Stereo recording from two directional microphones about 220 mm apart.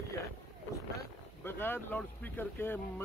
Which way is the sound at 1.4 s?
10° left (ahead or behind).